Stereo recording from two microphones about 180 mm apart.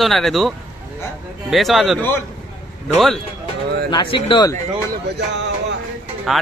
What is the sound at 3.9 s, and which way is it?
Speech, 25° left (ahead or behind).